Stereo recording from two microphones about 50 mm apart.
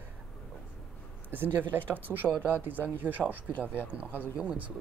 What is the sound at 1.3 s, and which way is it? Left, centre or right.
Speech, right.